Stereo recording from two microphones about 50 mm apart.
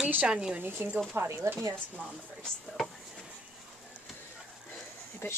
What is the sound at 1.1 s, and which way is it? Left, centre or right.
Speech, right.